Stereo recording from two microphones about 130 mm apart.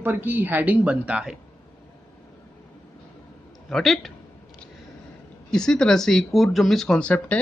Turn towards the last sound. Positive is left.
turn(degrees=10)  # may be behind; listen again after turning